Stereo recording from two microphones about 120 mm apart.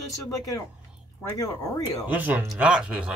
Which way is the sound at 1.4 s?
30° left (ahead or behind).